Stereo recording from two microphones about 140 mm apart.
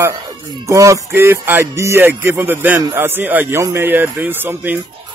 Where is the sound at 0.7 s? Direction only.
20° right (ahead or behind).